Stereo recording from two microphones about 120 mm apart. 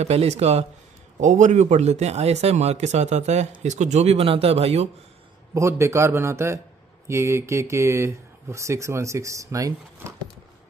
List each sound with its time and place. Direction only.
0.0 s speech: 60° right (ahead or behind)
1.2 s speech: 90° right; by 4.8 s 55° right (ahead or behind)
5.5 s speech: 25° right (ahead or behind)